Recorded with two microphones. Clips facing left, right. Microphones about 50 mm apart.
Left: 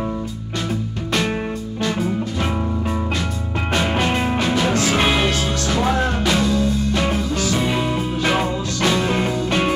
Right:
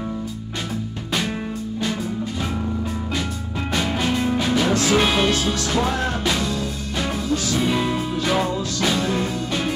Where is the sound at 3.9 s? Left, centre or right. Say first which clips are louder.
Left 2 dB; left.